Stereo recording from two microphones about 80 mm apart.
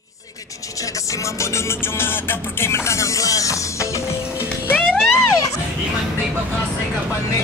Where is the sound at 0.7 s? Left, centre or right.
Left.